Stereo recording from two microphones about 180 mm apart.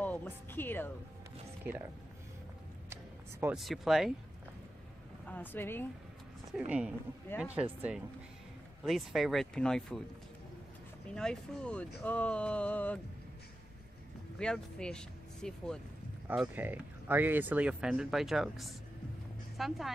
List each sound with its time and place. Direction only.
0.0 s speech: 10° left (ahead or behind)
1.6 s speech: 10° right (ahead or behind)
2.9 s a sound: 15° right (ahead or behind)
3.5 s speech: centre (ahead or behind)
5.2 s speech: 10° left (ahead or behind)
6.5 s speech: 5° right (ahead or behind)
8.8 s speech: centre (ahead or behind)
11.1 s speech: 5° left (ahead or behind)
14.4 s speech: 5° left (ahead or behind)
16.3 s speech: 10° right (ahead or behind)